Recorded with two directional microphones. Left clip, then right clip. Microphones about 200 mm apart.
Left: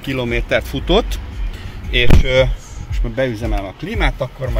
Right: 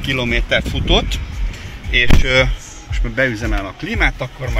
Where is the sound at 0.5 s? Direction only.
40° left (ahead or behind).